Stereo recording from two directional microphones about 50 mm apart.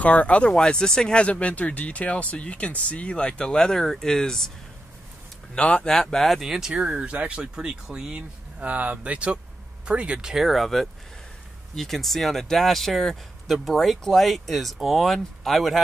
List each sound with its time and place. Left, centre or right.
0.0 s speech: left; by 4.5 s centre
5.5 s speech: left
5.9 s speech: centre
6.7 s speech: centre
8.1 s speech: right
10.3 s speech: centre